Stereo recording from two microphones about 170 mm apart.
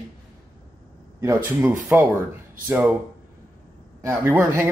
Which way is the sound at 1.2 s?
15° right (ahead or behind).